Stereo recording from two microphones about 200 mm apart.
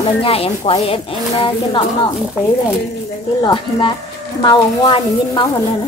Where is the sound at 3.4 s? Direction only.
25° left (ahead or behind).